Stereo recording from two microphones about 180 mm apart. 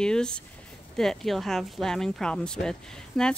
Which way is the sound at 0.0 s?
5° left (ahead or behind).